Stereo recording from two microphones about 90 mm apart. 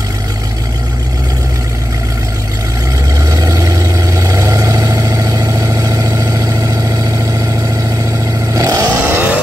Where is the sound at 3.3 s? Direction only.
35° right (ahead or behind).